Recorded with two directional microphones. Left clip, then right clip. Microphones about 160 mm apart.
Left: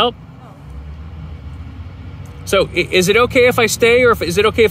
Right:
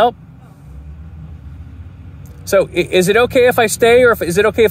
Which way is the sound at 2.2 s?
30° left (ahead or behind).